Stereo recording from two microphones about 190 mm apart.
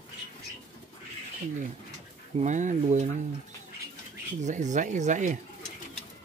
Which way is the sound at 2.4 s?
40° right (ahead or behind).